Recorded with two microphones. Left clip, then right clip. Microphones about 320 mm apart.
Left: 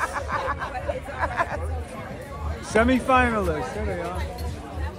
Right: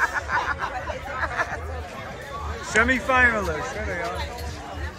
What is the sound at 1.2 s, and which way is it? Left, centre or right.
Chatter, left.